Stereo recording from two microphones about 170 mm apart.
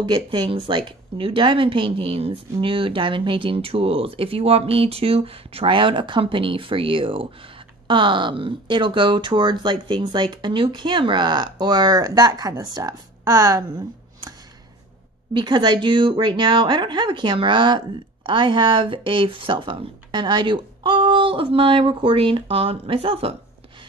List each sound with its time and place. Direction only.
0.0 s speech: 25° right (ahead or behind)
15.3 s speech: 25° right (ahead or behind)